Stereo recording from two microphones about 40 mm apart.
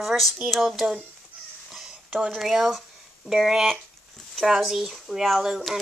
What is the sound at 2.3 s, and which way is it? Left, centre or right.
Speech, centre.